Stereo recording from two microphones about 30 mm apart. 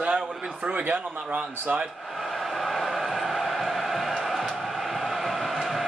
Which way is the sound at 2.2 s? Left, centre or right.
Centre.